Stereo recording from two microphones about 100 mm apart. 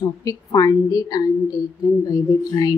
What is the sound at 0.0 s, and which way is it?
A woman's voice, 35° left (ahead or behind).